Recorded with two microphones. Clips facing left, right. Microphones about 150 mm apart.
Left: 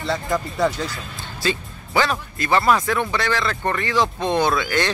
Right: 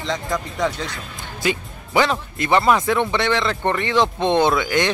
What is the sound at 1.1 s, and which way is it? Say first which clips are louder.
Speech: right 3 dB; 15° right (ahead or behind).